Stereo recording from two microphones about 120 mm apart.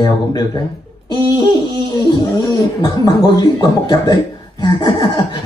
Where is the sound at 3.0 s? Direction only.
35° left (ahead or behind).